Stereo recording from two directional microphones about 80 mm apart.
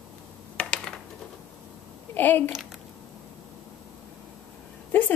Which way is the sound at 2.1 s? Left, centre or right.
Left.